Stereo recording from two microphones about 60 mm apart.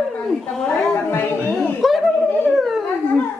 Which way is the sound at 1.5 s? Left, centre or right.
Centre.